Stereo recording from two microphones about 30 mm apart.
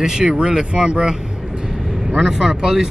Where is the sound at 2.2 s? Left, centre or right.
Centre.